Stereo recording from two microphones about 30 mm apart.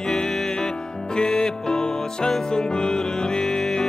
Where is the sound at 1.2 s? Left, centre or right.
Left.